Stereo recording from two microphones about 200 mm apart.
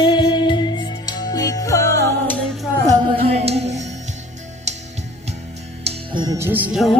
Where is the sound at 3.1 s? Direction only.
30° right (ahead or behind).